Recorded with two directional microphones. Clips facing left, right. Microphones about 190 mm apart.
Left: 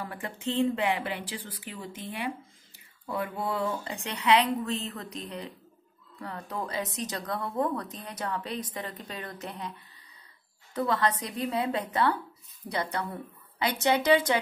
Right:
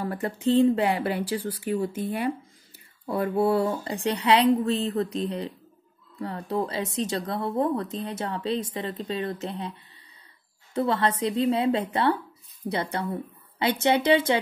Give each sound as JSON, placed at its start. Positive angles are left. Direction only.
{"t": 0.0, "sound": "speech", "side_deg": -40}
{"t": 10.7, "sound": "speech", "side_deg": -25}
{"t": 12.6, "sound": "speech", "side_deg": -50}
{"t": 13.6, "sound": "speech", "side_deg": -25}